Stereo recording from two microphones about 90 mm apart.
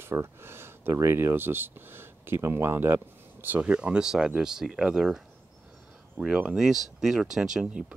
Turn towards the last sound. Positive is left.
turn(degrees=-10)  # may be behind; listen again after turning